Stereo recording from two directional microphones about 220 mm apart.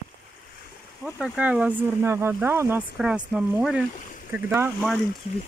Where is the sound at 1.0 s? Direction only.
5° right (ahead or behind).